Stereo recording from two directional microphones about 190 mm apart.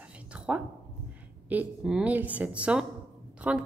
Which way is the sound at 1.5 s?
5° right (ahead or behind).